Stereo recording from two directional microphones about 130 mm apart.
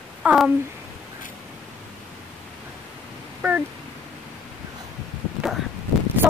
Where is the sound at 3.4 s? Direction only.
20° right (ahead or behind).